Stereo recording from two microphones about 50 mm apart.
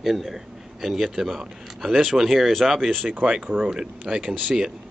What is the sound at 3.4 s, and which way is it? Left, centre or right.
Speech, right.